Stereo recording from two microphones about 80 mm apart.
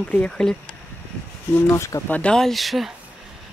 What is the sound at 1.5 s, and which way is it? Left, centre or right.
Speech, left.